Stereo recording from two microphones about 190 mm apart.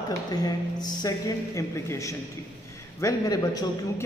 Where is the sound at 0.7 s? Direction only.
20° left (ahead or behind).